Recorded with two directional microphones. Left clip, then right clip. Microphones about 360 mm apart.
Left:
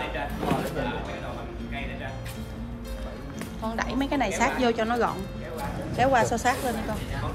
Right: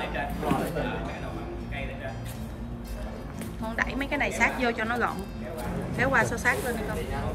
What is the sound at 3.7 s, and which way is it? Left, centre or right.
A woman's voice, centre.